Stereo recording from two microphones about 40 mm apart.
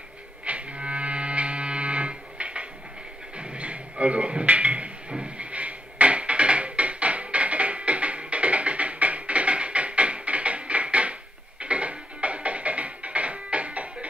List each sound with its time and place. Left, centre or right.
0.5 s music: right